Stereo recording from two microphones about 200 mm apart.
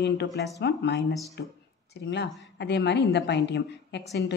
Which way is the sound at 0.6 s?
55° left (ahead or behind).